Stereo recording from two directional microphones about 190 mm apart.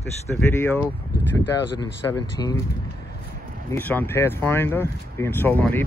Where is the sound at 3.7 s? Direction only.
10° left (ahead or behind).